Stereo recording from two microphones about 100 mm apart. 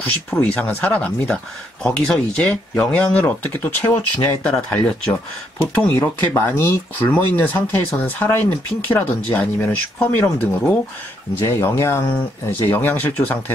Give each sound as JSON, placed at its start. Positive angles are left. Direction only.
{"t": 0.3, "sound": "speech", "side_deg": 10}
{"t": 11.4, "sound": "speech", "side_deg": 25}